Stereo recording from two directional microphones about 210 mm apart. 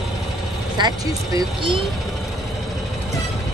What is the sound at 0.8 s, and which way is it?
Speech, 20° right (ahead or behind).